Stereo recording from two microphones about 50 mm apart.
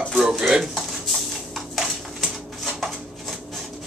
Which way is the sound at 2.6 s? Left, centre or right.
Centre.